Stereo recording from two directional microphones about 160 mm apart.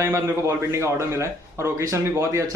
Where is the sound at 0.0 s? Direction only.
15° right (ahead or behind).